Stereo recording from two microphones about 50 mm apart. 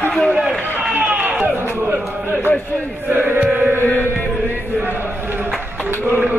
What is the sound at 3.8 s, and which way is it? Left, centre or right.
Chant, left.